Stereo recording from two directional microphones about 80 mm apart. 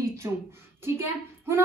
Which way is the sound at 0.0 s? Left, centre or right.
Right.